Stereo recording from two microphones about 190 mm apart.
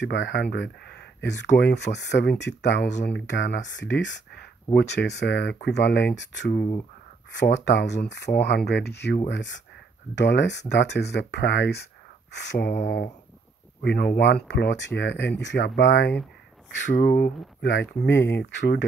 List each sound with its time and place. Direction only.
0.0 s speech: 65° left (ahead or behind)
13.8 s speech: 55° left (ahead or behind)
17.6 s speech: 70° left (ahead or behind)